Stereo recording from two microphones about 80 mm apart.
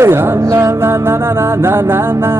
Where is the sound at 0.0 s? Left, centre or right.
Right.